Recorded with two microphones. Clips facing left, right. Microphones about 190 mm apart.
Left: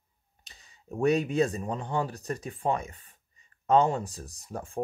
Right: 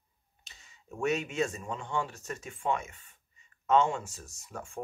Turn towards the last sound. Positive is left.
turn(degrees=35)  # may be behind; listen again after turning